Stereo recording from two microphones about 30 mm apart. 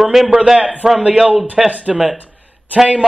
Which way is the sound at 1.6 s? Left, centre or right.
Right.